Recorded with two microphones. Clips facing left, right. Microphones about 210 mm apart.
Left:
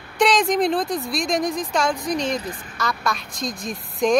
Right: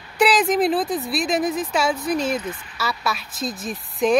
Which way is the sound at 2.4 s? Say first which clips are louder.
Right 1 dB; 40° left (ahead or behind).